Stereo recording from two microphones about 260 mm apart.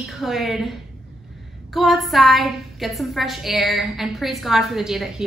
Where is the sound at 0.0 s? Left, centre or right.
Centre.